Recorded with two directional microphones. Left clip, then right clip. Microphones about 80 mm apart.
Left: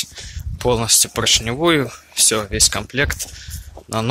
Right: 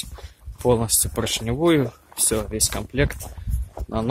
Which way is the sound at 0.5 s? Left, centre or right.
Right.